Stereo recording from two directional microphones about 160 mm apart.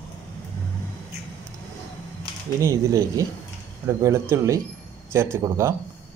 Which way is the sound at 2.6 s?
20° right (ahead or behind).